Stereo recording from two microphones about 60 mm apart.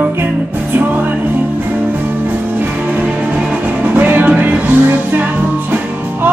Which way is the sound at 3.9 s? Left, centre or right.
Right.